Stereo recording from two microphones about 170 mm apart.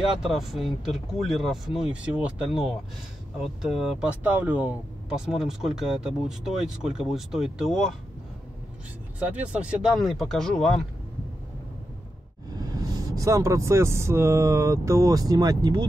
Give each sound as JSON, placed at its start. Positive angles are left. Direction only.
{"t": 0.2, "sound": "speech", "side_deg": 0}
{"t": 9.2, "sound": "speech", "side_deg": -5}
{"t": 12.5, "sound": "speech", "side_deg": -20}